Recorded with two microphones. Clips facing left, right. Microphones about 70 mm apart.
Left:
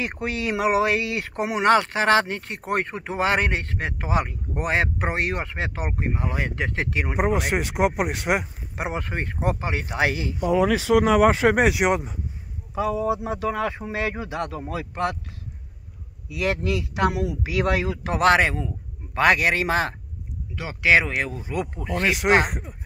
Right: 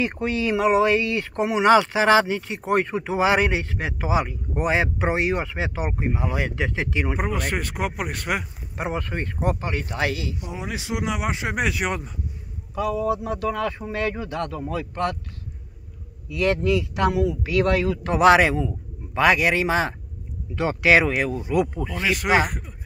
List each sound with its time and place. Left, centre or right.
0.0 s speech: centre
7.2 s speech: centre
10.4 s speech: left
11.8 s speech: left
16.3 s speech: centre
18.2 s a man's voice: centre
20.5 s speech: right
21.5 s speech: centre
22.2 s speech: centre